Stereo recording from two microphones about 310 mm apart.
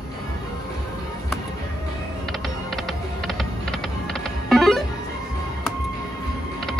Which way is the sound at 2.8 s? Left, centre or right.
Centre.